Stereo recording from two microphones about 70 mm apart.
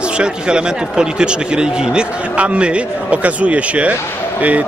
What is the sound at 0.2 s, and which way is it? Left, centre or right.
A man's voice, centre.